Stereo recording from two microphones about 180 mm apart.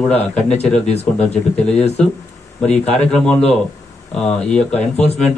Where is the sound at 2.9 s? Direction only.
5° left (ahead or behind).